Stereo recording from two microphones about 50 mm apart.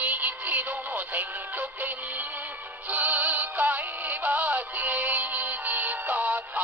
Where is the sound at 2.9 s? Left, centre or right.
Right.